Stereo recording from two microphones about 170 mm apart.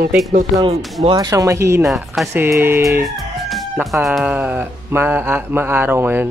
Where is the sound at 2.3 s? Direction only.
15° right (ahead or behind).